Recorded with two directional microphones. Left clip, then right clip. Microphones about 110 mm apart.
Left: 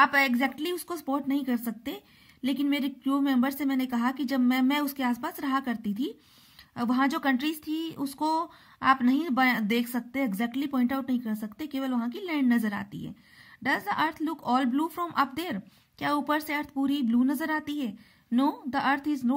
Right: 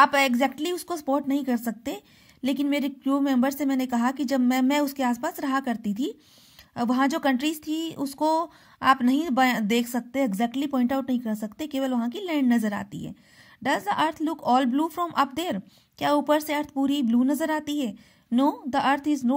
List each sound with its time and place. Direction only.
0.0 s a woman's voice: 40° right (ahead or behind)